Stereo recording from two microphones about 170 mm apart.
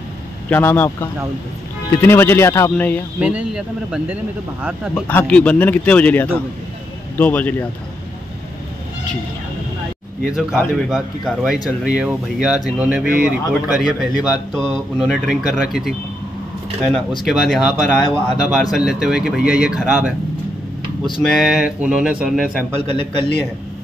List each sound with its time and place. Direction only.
0.5 s a man's voice: 10° left (ahead or behind)
3.2 s speech: 5° right (ahead or behind)
5.0 s a man's voice: 10° left (ahead or behind)
10.2 s speech: 5° right (ahead or behind)
17.2 s speech: centre (ahead or behind)
21.2 s speech: centre (ahead or behind)
22.8 s a man's voice: 30° left (ahead or behind)